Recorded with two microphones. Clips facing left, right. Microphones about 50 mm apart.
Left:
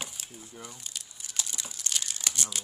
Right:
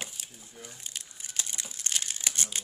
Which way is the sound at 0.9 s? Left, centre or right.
Right.